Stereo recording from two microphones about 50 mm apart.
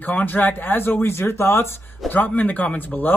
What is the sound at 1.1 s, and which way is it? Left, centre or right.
Speech, left.